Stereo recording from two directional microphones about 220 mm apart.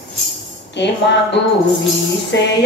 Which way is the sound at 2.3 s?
50° left (ahead or behind).